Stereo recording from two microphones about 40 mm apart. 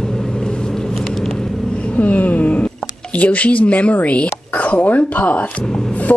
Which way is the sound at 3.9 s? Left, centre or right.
Left.